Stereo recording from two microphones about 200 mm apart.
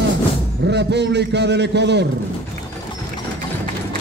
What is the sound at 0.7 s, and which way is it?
A man's voice, 60° right (ahead or behind).